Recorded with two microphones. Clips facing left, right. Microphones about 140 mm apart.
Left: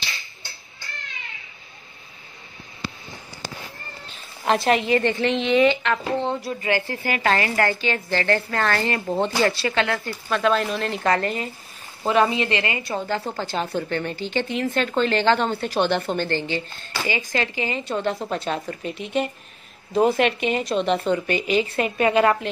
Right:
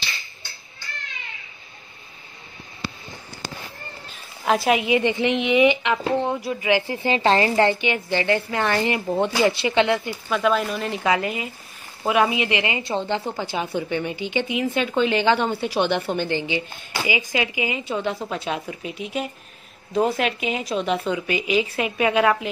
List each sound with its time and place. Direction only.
4.5 s a woman's voice: 5° right (ahead or behind)
10.3 s a woman's voice: 5° right (ahead or behind); by 13.2 s 25° right (ahead or behind)
13.7 s a woman's voice: 15° right (ahead or behind)